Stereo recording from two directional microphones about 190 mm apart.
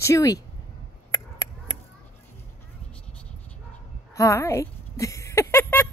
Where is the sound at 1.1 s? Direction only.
20° left (ahead or behind).